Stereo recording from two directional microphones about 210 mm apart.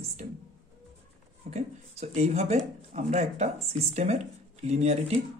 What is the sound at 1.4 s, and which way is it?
Speech, 30° right (ahead or behind).